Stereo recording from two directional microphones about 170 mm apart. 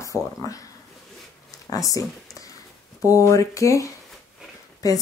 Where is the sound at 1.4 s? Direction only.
20° left (ahead or behind).